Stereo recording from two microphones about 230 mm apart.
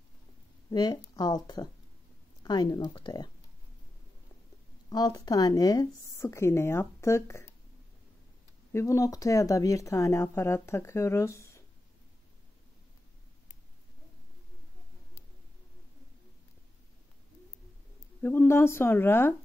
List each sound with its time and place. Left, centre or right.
0.7 s speech: centre
4.8 s speech: centre
8.7 s speech: centre
18.2 s speech: centre